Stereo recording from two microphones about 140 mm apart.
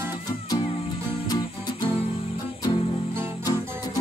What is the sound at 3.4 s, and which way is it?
Music, 25° left (ahead or behind).